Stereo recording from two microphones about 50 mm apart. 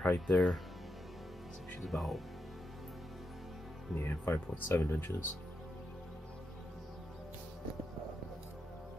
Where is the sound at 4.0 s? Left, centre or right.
Left.